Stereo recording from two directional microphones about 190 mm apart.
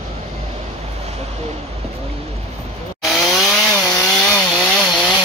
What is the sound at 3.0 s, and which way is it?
Chainsaw, centre (ahead or behind).